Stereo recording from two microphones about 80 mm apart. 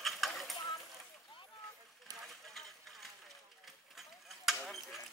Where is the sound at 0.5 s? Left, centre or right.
Left.